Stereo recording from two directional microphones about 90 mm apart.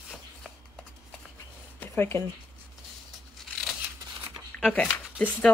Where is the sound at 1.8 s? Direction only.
25° left (ahead or behind).